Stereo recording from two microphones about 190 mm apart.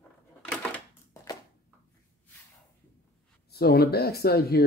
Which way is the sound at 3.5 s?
55° left (ahead or behind).